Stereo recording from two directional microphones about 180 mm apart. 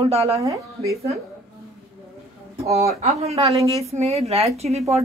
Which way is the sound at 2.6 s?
35° right (ahead or behind).